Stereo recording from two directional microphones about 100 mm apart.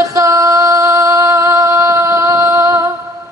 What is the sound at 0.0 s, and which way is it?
Female singing, 30° right (ahead or behind).